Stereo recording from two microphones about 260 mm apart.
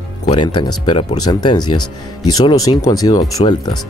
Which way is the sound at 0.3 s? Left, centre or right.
Centre.